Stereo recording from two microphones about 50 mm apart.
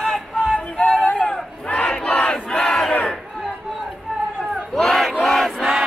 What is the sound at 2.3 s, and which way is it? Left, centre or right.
Crowd, centre.